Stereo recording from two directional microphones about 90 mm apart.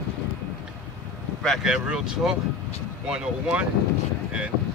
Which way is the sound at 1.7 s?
10° right (ahead or behind).